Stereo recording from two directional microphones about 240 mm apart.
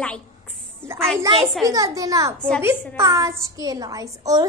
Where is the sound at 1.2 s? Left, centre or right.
Centre.